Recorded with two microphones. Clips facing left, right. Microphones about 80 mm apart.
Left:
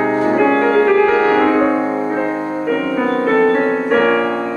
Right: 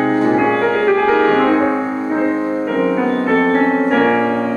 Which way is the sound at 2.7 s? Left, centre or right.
Centre.